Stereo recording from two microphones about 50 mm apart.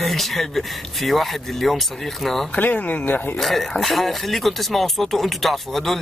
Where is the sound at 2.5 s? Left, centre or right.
Left.